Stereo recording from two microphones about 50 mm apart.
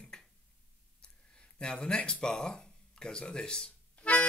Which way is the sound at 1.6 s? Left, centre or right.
Centre.